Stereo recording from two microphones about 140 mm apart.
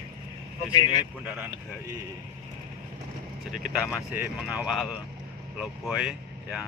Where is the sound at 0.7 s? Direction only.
30° left (ahead or behind).